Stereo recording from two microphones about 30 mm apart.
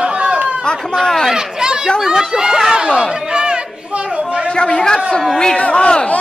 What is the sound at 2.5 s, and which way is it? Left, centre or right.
Chatter, centre.